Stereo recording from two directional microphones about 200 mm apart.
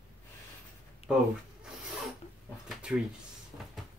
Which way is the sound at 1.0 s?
30° left (ahead or behind).